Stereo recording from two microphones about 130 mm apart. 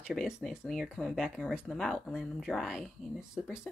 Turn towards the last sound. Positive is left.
turn(degrees=0)  # may be behind; listen again after turning